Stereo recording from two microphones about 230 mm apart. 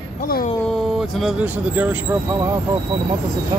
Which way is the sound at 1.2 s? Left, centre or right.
Centre.